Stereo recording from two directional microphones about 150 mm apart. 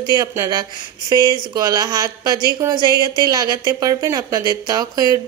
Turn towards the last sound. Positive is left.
turn(degrees=-25)  # may be behind; listen again after turning